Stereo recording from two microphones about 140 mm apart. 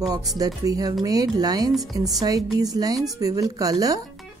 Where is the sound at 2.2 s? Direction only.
25° right (ahead or behind).